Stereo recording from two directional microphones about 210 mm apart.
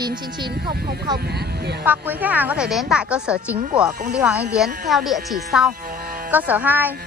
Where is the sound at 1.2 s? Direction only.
50° right (ahead or behind).